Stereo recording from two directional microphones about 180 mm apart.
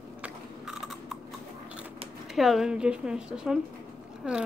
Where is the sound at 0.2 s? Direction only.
Centre (ahead or behind).